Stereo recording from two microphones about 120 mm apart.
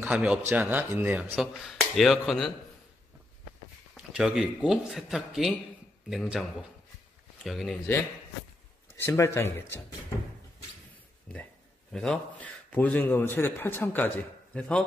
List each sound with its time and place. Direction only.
0.0 s speech: 10° right (ahead or behind)
1.3 s a man's voice: centre (ahead or behind)
3.9 s a man's voice: 5° right (ahead or behind)
7.4 s a man's voice: centre (ahead or behind)
9.0 s speech: 25° left (ahead or behind)
11.9 s a man's voice: 5° left (ahead or behind)